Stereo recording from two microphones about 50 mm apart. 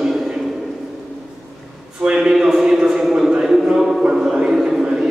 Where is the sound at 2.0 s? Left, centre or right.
Centre.